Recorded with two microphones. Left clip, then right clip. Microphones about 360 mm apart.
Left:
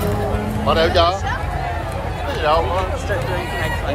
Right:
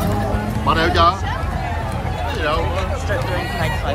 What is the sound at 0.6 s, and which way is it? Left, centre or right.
Music, centre.